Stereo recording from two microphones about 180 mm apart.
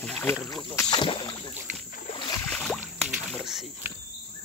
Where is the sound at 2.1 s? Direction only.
30° left (ahead or behind).